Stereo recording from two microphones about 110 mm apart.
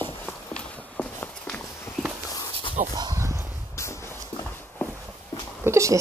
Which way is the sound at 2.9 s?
35° right (ahead or behind).